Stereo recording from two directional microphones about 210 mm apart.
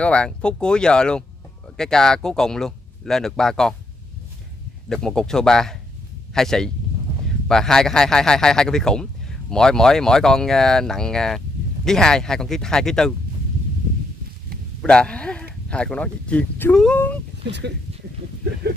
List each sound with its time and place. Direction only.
0.0 s speech: 5° left (ahead or behind)
4.8 s speech: centre (ahead or behind)
14.8 s speech: 5° left (ahead or behind)
17.5 s speech: 55° right (ahead or behind)